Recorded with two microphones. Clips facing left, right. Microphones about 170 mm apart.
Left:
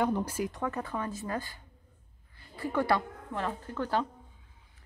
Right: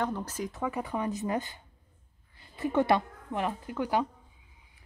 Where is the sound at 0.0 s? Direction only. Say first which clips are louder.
Left 3 dB; 10° left (ahead or behind).